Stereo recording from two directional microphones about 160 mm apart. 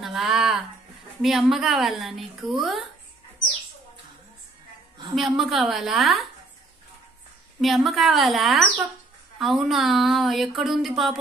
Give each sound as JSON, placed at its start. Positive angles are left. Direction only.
{"t": 0.0, "sound": "a sound", "side_deg": 0}
{"t": 1.2, "sound": "speech", "side_deg": 0}
{"t": 5.1, "sound": "speech", "side_deg": 0}
{"t": 7.6, "sound": "speech", "side_deg": 0}